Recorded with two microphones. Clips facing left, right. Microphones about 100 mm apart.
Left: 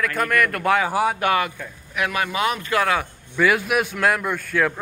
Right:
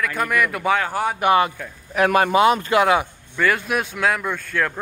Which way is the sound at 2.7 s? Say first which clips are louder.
Right 1 dB; 20° right (ahead or behind).